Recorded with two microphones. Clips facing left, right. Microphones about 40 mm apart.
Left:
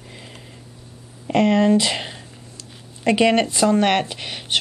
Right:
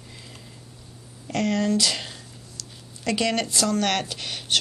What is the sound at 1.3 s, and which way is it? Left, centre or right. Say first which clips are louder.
Speech: left 8 dB; left.